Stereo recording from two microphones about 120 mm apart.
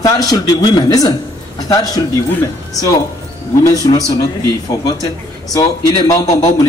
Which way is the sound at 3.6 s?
30° left (ahead or behind).